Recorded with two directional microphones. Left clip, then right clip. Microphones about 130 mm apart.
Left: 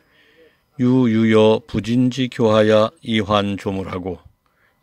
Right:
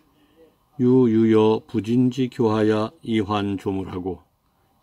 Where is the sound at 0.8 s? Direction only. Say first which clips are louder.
Even; 40° left (ahead or behind).